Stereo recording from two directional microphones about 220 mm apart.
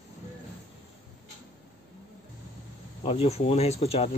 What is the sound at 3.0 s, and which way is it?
Speech, 25° left (ahead or behind).